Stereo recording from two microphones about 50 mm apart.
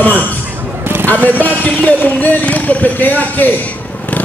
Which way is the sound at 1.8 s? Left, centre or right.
Left.